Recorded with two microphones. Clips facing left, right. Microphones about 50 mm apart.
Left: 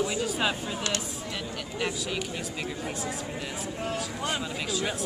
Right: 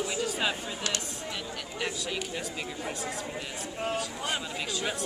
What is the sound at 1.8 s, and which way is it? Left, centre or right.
Speech, centre.